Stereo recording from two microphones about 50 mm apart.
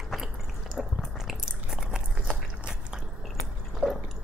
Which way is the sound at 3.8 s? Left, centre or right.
Right.